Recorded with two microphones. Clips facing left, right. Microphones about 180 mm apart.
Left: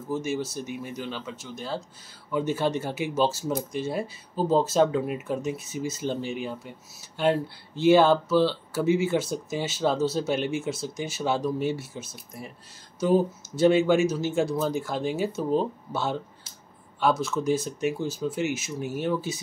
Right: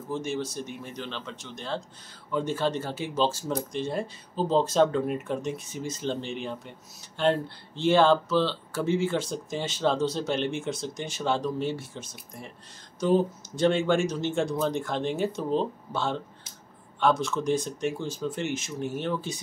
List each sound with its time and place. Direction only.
0.1 s speech: 5° left (ahead or behind)